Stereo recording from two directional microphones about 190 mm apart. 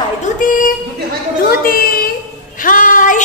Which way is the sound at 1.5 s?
50° left (ahead or behind).